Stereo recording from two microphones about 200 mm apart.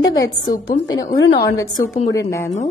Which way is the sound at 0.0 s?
20° left (ahead or behind).